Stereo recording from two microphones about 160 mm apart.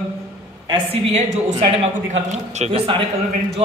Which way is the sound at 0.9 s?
40° right (ahead or behind).